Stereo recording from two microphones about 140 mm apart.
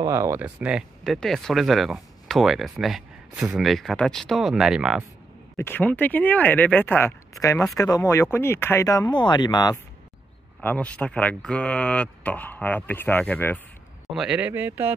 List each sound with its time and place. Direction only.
0.0 s speech: 20° right (ahead or behind)
0.6 s speech: 5° right (ahead or behind)
5.6 s speech: 15° left (ahead or behind); by 9.8 s 30° left (ahead or behind)
10.6 s speech: 10° left (ahead or behind)
14.1 s speech: 5° right (ahead or behind)